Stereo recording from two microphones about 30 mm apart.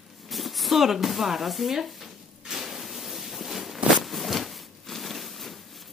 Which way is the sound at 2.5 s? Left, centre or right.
Centre.